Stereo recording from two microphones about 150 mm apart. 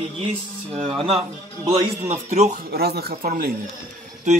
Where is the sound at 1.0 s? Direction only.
40° right (ahead or behind).